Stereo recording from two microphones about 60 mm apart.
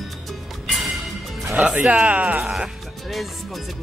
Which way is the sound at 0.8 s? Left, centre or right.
Centre.